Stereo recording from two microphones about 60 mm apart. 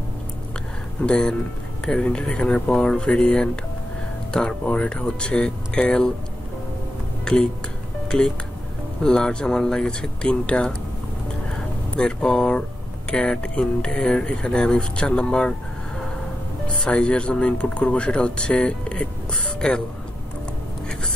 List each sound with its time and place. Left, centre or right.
1.0 s speech: centre
8.1 s speech: centre
12.0 s speech: centre
16.6 s speech: centre